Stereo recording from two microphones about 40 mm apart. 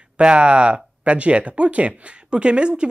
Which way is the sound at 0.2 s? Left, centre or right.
Right.